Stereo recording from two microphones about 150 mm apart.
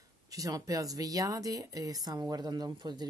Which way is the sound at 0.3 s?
25° right (ahead or behind).